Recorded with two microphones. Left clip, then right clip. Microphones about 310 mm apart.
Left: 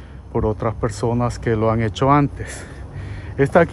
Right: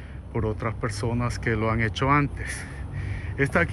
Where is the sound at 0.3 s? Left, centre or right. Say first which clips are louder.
Left 8 dB; centre.